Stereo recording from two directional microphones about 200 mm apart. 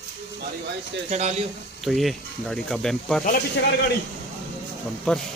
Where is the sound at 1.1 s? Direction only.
35° right (ahead or behind).